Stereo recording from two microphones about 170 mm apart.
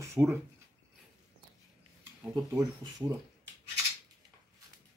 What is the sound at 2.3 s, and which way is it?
Speech, 20° right (ahead or behind).